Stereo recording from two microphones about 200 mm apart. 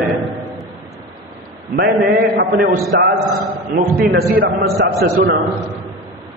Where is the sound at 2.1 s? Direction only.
45° right (ahead or behind).